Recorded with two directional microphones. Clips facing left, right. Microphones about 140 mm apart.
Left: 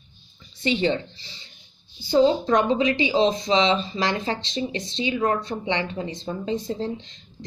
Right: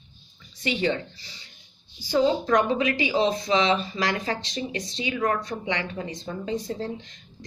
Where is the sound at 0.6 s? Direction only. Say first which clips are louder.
Left 3 dB; 30° left (ahead or behind).